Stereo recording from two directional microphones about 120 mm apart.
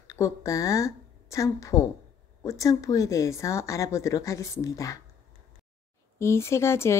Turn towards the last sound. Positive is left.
turn(degrees=20)  # may be behind; listen again after turning